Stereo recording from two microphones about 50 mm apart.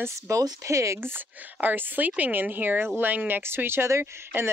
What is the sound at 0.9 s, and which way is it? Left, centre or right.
Speech, right.